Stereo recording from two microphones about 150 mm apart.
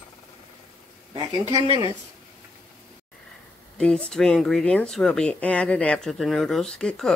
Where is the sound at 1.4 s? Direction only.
45° right (ahead or behind).